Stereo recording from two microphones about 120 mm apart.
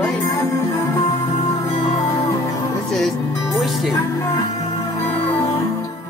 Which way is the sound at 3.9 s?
35° left (ahead or behind).